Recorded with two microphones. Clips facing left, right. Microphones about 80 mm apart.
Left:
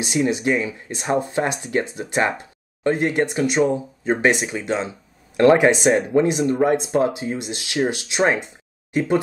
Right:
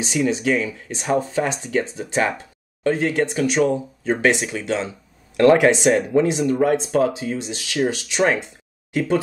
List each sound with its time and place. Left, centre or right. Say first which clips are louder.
0.0 s speech: even; centre